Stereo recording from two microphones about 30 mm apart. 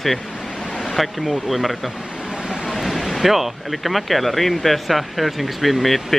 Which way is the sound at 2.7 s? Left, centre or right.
Centre.